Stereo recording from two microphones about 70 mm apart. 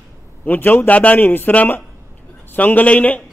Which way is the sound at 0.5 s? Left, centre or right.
Left.